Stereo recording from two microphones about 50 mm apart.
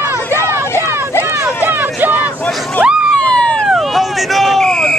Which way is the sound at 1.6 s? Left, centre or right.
Right.